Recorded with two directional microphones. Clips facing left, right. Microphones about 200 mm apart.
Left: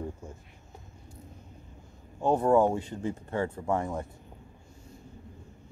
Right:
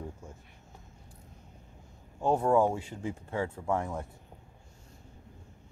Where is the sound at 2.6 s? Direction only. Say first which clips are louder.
Left 2 dB; 10° right (ahead or behind).